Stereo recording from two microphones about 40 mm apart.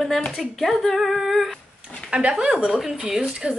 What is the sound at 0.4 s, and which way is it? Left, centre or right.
Speech, centre.